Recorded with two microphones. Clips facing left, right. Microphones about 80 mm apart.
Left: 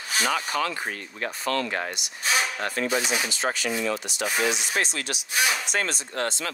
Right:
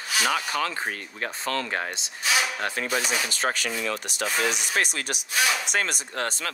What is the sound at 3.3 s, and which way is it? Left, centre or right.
Speech, right.